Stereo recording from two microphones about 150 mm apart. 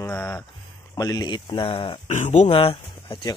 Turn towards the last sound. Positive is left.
turn(degrees=35)  # may be behind; listen again after turning